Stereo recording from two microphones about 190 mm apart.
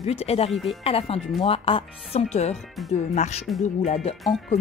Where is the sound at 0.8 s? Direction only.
30° left (ahead or behind).